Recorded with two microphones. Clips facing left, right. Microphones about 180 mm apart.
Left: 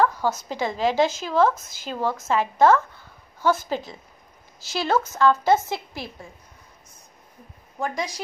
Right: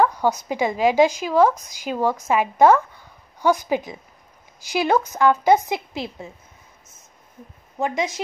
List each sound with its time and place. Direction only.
0.0 s a woman's voice: 15° right (ahead or behind)
7.8 s speech: 25° right (ahead or behind)